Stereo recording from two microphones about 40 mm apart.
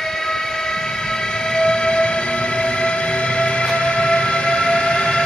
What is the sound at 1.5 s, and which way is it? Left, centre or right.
Train, left.